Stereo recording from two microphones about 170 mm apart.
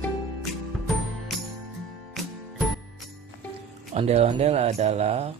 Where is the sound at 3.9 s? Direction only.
40° right (ahead or behind).